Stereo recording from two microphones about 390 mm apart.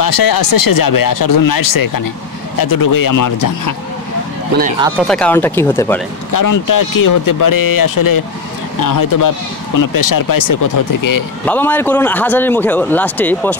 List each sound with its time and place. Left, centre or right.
0.0 s speech: left
4.6 s speech: centre
5.0 s a man's voice: centre
6.3 s speech: left
11.4 s a man's voice: centre